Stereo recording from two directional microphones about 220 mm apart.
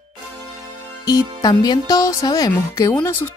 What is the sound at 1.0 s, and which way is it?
Speech, 15° left (ahead or behind).